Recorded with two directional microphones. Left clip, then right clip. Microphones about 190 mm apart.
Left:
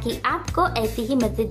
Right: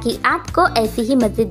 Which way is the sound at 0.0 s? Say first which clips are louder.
Right 6 dB; 30° right (ahead or behind).